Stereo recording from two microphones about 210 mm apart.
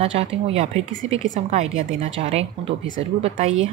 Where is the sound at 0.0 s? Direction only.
30° right (ahead or behind).